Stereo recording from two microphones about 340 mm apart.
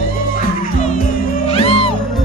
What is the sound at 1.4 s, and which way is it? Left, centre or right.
Music, centre.